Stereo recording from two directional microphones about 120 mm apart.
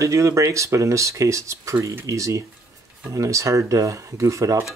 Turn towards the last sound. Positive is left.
turn(degrees=-30)  # may be behind; listen again after turning